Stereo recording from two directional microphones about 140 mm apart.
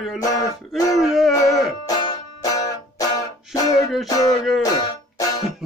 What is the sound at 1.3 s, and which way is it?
Music, 25° left (ahead or behind).